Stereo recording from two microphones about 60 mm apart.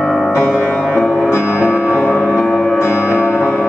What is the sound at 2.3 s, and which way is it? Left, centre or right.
Music, left.